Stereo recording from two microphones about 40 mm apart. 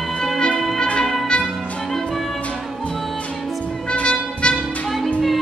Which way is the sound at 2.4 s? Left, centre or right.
Left.